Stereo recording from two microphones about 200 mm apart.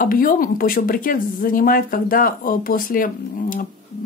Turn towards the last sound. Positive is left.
turn(degrees=45)  # may be behind; listen again after turning